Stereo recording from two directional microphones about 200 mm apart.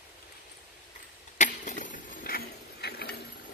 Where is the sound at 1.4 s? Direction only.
35° left (ahead or behind); by 3.2 s 55° left (ahead or behind).